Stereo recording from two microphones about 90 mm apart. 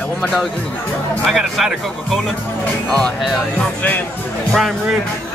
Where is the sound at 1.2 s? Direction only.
Centre (ahead or behind).